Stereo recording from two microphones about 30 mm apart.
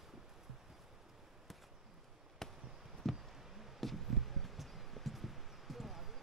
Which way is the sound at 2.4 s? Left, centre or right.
Centre.